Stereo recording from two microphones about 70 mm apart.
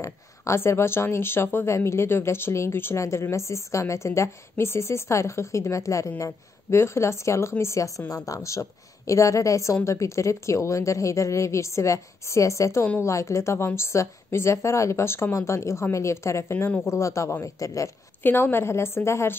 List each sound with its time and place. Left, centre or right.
0.0 s speech: left
18.2 s speech: left